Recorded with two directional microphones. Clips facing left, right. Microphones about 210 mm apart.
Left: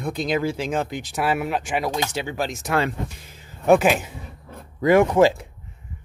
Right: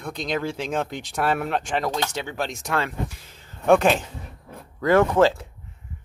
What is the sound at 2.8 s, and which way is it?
Speech, 15° left (ahead or behind).